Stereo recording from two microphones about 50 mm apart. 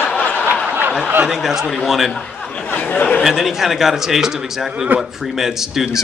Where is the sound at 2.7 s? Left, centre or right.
Left.